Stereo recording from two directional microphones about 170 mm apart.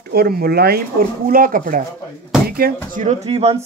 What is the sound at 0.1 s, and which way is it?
Speech, 65° right (ahead or behind).